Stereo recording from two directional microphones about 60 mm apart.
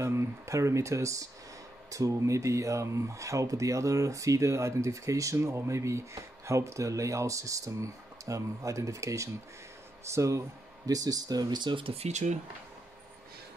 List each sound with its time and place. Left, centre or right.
0.0 s speech: right
5.4 s speech: right
10.9 s speech: right